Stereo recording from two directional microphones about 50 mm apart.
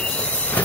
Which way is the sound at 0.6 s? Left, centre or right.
Left.